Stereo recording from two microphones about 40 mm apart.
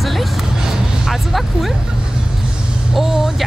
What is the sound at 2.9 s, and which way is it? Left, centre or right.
Speech, centre.